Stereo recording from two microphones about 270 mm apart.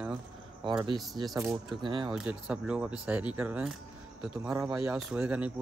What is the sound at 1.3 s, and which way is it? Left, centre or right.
Speech, centre.